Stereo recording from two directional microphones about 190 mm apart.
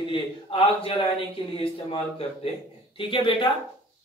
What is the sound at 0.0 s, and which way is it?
Speech, 25° left (ahead or behind).